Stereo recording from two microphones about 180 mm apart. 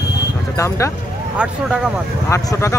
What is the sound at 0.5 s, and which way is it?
Speech, 15° left (ahead or behind).